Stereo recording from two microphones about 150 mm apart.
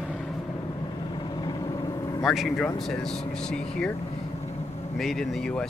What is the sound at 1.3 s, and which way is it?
Vehicle, 30° left (ahead or behind).